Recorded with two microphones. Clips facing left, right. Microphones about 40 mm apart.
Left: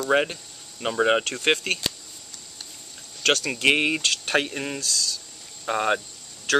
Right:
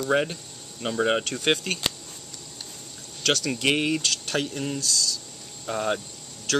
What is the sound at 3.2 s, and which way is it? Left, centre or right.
Speech, centre.